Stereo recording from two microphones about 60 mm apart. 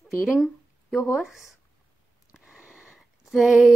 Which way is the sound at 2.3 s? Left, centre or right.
Centre.